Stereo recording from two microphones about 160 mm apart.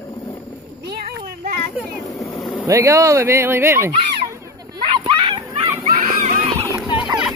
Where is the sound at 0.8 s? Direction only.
70° right (ahead or behind).